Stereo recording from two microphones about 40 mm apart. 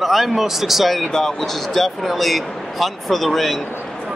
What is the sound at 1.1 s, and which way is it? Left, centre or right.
Speech, centre.